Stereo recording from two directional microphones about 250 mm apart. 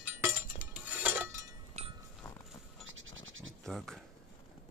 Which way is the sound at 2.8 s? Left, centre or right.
Right.